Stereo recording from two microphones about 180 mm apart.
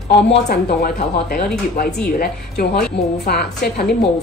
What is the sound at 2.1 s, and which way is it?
A woman's voice, 60° left (ahead or behind).